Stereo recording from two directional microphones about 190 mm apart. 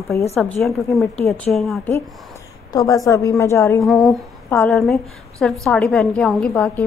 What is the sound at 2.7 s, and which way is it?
A woman's voice, 15° left (ahead or behind).